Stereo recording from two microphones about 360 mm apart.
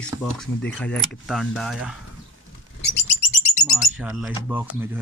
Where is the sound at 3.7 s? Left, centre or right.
Centre.